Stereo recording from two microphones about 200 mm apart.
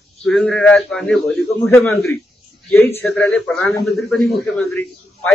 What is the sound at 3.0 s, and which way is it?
A man's voice, 5° left (ahead or behind).